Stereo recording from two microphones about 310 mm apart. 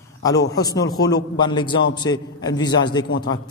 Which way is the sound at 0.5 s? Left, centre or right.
Centre.